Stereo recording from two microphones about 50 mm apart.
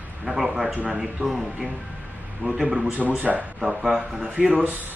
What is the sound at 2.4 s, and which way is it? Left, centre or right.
Speech, right.